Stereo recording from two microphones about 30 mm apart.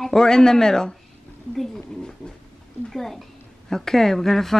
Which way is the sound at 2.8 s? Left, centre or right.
Centre.